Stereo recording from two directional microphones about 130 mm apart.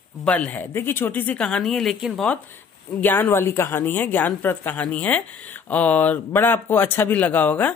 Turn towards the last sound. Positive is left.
turn(degrees=10)  # may be behind; listen again after turning